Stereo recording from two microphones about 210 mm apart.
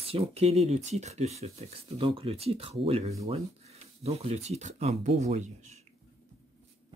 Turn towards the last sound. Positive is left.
turn(degrees=-30)  # may be behind; listen again after turning